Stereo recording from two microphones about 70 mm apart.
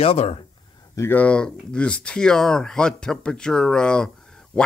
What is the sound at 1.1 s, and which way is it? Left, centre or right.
Speech, centre.